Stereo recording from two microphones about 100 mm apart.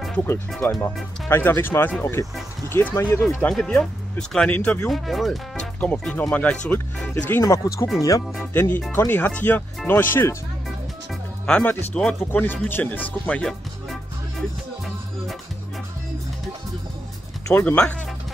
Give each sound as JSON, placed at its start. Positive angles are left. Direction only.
{"t": 0.1, "sound": "speech", "side_deg": 20}
{"t": 3.3, "sound": "speech", "side_deg": 5}
{"t": 4.8, "sound": "speech", "side_deg": 0}
{"t": 5.8, "sound": "speech", "side_deg": 10}
{"t": 7.4, "sound": "speech", "side_deg": 35}
{"t": 8.5, "sound": "speech", "side_deg": 20}
{"t": 11.4, "sound": "speech", "side_deg": 10}
{"t": 17.6, "sound": "speech", "side_deg": 15}